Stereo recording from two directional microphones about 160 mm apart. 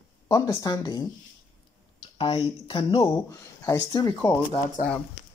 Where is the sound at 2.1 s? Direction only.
30° left (ahead or behind).